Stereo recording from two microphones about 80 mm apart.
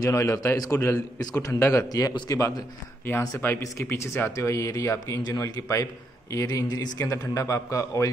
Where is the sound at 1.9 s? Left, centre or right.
Left.